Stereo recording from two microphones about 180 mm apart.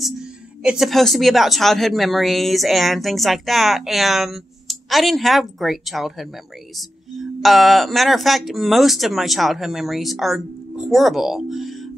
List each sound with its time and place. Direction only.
0.7 s speech: centre (ahead or behind)